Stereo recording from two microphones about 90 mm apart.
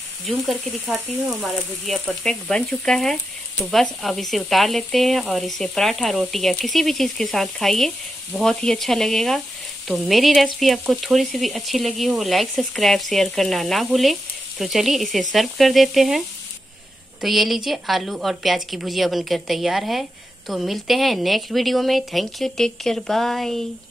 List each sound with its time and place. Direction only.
0.3 s a woman's voice: centre (ahead or behind)
17.2 s a woman's voice: centre (ahead or behind)